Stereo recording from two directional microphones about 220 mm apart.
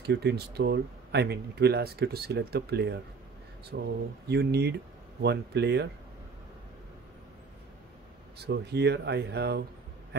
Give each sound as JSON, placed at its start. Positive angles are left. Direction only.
{"t": 0.0, "sound": "speech", "side_deg": -50}
{"t": 8.4, "sound": "speech", "side_deg": -50}